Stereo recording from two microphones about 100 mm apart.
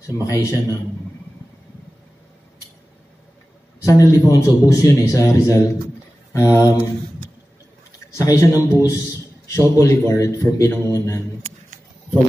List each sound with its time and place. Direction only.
0.0 s a man's voice: 35° left (ahead or behind)
3.8 s a man's voice: 35° left (ahead or behind)
8.2 s a man's voice: 30° left (ahead or behind)